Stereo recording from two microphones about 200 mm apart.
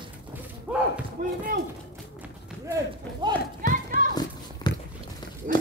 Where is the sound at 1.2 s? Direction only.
45° right (ahead or behind).